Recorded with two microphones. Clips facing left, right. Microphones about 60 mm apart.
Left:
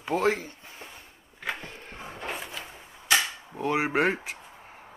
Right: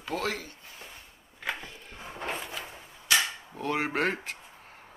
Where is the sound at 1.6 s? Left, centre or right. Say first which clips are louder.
Left 3 dB; left.